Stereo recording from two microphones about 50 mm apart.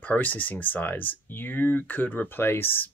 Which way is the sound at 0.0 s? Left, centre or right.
Left.